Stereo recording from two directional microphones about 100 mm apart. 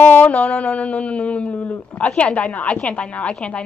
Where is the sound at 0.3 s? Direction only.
5° left (ahead or behind).